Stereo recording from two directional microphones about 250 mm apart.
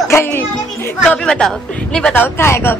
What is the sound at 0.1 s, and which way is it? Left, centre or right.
A woman's voice, centre.